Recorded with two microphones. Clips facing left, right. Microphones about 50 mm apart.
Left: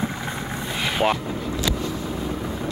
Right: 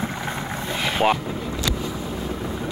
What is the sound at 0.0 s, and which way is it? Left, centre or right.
Vehicle, centre.